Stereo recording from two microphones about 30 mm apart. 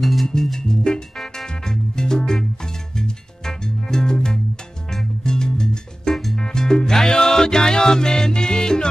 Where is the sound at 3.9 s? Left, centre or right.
Left.